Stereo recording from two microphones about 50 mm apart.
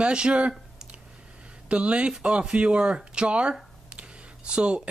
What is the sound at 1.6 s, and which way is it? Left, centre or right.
Speech, right.